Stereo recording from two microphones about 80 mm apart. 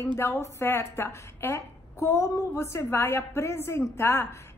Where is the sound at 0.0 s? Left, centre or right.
Left.